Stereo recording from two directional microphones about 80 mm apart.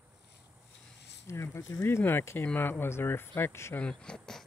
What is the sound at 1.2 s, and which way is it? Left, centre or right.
Speech, left.